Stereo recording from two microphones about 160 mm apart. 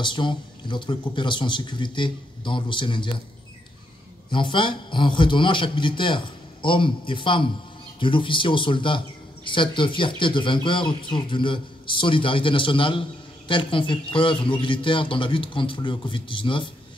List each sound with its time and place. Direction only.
0.0 s speech: 30° left (ahead or behind)
4.3 s speech: 30° left (ahead or behind)